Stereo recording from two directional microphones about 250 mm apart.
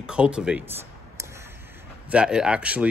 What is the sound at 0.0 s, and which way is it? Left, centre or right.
A man's voice, centre.